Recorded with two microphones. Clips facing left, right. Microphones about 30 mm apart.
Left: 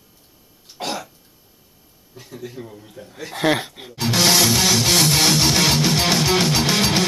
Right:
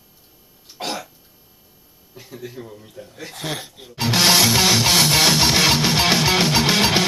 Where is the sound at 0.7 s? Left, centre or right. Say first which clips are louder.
Left 1 dB; centre.